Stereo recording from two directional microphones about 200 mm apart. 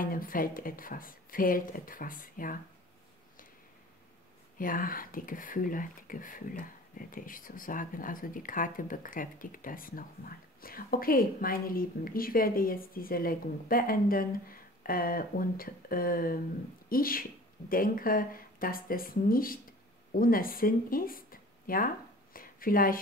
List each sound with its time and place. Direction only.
0.0 s speech: 45° left (ahead or behind)
4.6 s speech: 45° left (ahead or behind)